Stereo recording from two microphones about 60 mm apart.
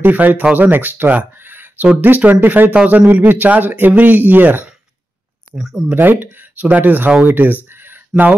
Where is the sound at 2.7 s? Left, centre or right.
Right.